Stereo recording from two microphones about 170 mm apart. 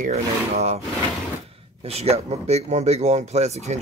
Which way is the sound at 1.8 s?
35° right (ahead or behind).